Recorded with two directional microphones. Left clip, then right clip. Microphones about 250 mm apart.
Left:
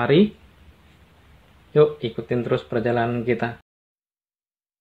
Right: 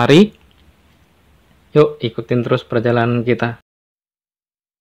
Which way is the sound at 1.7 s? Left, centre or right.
Right.